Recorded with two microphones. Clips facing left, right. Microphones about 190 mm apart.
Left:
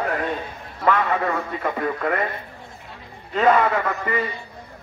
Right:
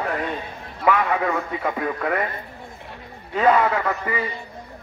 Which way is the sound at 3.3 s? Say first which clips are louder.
Even; 10° right (ahead or behind).